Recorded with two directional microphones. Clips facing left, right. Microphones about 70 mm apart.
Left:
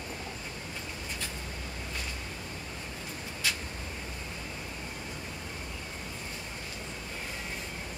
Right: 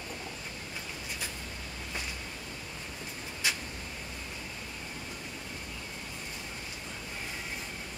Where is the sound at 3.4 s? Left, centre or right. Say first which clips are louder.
Even; centre.